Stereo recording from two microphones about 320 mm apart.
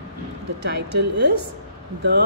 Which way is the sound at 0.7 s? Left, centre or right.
Right.